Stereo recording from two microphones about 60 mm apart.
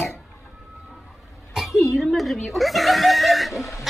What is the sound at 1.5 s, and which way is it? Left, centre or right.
Snicker, centre.